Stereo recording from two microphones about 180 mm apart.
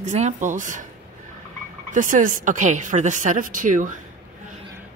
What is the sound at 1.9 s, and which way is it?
A woman's voice, 45° right (ahead or behind).